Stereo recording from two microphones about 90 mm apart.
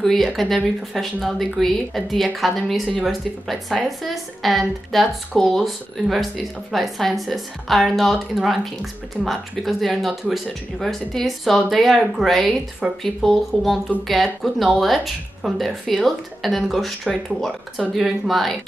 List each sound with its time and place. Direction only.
0.0 s speech: centre (ahead or behind)